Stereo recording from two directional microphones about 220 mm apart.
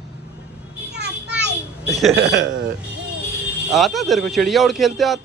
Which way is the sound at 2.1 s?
55° right (ahead or behind).